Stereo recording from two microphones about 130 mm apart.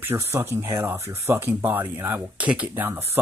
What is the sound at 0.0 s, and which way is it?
Speech, 20° right (ahead or behind).